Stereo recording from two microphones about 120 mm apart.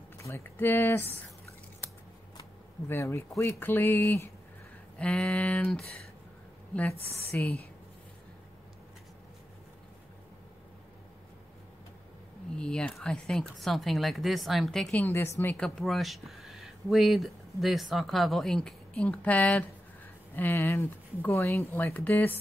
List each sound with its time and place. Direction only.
0.2 s speech: 20° left (ahead or behind)
2.9 s speech: 20° left (ahead or behind)
4.9 s speech: 5° left (ahead or behind)
7.3 s speech: 10° left (ahead or behind)
12.5 s speech: 5° left (ahead or behind)
15.0 s speech: 20° left (ahead or behind)
15.5 s speech: 5° left (ahead or behind)